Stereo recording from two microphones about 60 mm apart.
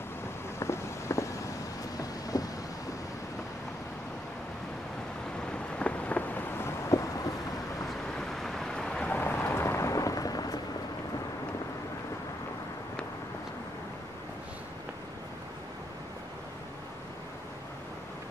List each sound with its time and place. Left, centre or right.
0.6 s vehicle: left
2.0 s vehicle: left
5.8 s a sound: left
6.6 s vehicle: left
8.2 s vehicle: centre
9.1 s thunder: left